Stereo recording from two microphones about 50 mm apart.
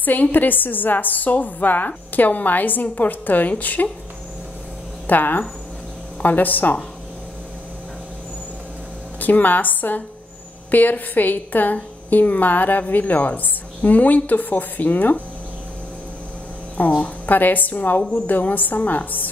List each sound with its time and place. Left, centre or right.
0.0 s a woman's voice: left
5.0 s a woman's voice: left
9.2 s a woman's voice: left
16.7 s a woman's voice: left